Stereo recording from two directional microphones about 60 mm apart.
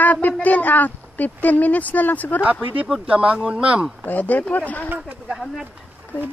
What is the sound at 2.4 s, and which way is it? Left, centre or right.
Speech, right.